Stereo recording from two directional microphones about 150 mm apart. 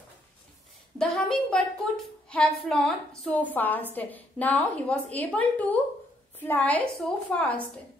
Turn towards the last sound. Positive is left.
turn(degrees=10)  # may be behind; listen again after turning